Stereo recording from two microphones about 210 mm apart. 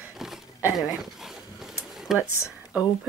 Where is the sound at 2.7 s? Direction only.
5° right (ahead or behind).